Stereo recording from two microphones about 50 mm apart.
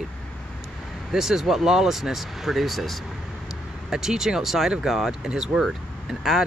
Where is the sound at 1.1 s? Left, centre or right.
Centre.